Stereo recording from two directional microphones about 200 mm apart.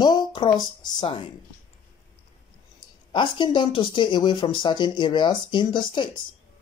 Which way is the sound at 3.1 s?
25° left (ahead or behind).